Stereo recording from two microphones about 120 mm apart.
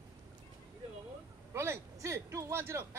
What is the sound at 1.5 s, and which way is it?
A man's voice, 20° right (ahead or behind).